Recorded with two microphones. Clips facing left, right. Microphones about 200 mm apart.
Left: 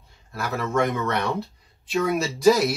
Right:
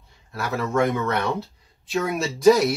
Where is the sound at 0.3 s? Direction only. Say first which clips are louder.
Right 1 dB; centre (ahead or behind).